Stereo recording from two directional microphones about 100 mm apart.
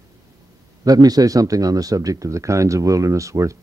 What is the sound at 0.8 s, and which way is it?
Speech, 40° right (ahead or behind).